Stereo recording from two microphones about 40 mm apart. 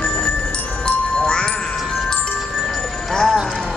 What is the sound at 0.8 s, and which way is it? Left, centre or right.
Music, left.